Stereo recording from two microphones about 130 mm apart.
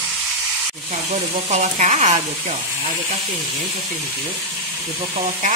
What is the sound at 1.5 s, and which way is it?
Frying, 65° right (ahead or behind).